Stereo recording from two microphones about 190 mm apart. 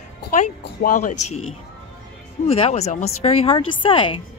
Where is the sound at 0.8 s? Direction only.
45° left (ahead or behind).